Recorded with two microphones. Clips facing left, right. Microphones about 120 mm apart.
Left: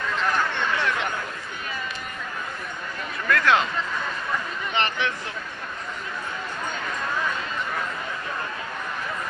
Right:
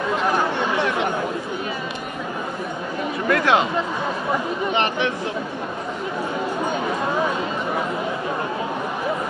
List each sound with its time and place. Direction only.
0.0 s a sound: 15° right (ahead or behind)
0.7 s chatter: 20° right (ahead or behind)
3.3 s speech: 15° right (ahead or behind)
6.7 s speech: 20° right (ahead or behind)